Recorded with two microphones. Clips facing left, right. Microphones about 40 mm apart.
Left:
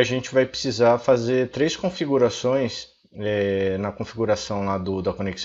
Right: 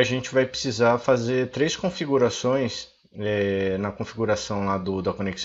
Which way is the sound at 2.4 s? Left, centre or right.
Centre.